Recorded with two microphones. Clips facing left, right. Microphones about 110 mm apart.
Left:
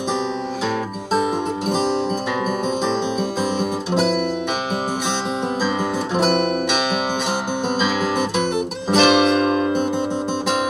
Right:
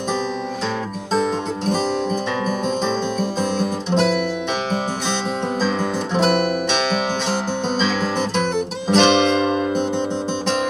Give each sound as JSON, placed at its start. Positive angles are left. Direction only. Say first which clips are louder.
{"t": 3.2, "sound": "music", "louder": "even", "side_deg": 5}
{"t": 8.8, "sound": "music", "louder": "even", "side_deg": 5}